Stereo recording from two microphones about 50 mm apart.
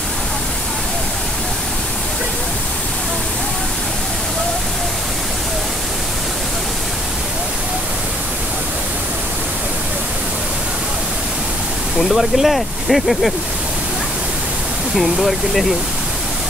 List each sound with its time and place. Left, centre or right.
12.0 s speech: centre
15.0 s speech: centre